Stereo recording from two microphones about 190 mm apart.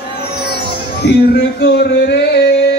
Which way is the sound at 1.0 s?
60° left (ahead or behind).